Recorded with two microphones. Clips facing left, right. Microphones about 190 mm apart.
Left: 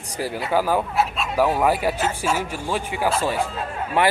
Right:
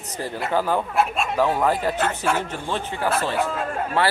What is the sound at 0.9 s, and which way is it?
Speech, 50° right (ahead or behind).